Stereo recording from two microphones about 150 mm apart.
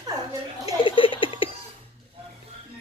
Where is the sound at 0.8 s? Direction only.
35° left (ahead or behind).